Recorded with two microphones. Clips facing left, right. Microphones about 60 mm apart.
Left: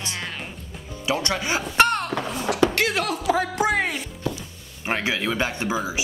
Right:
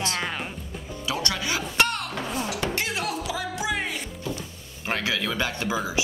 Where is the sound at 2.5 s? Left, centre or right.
Left.